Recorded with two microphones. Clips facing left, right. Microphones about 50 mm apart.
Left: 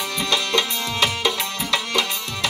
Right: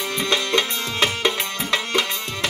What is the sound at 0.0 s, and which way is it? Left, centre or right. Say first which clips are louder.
Music: right 1 dB; right.